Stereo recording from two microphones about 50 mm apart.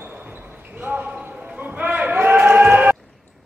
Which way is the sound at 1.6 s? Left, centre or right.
Right.